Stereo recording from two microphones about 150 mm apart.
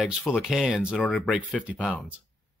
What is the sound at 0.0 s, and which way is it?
Speech, centre (ahead or behind).